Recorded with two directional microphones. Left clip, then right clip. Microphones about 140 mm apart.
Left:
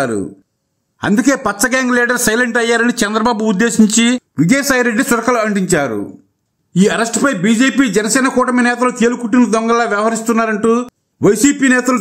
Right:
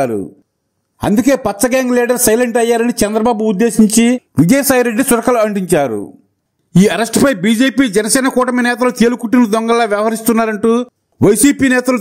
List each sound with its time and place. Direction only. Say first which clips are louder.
0.9 s a man's voice: right 1 dB; 30° right (ahead or behind)
4.4 s a man's voice: right 2 dB; 35° right (ahead or behind)
6.7 s a man's voice: right 1 dB; 50° right (ahead or behind)